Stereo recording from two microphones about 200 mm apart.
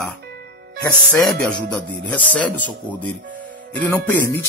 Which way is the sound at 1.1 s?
Centre (ahead or behind).